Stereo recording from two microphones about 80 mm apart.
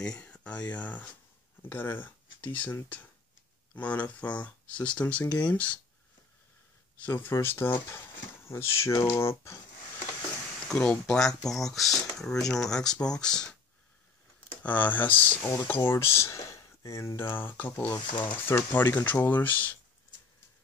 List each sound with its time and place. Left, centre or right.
0.0 s speech: centre
7.1 s speech: left
10.7 s speech: centre
14.6 s speech: centre